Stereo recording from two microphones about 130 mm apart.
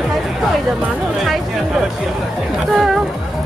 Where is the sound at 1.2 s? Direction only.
Centre (ahead or behind).